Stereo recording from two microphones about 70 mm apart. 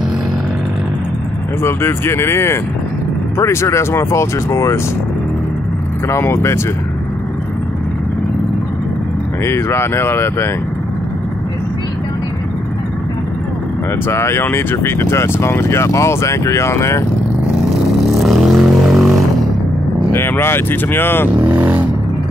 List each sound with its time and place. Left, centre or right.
1.6 s speech: left
6.0 s speech: left
9.4 s speech: left
14.0 s speech: left
18.2 s a sound: centre
20.1 s speech: left
21.5 s vehicle: right